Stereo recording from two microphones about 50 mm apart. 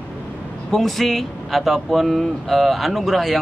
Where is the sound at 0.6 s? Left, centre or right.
Centre.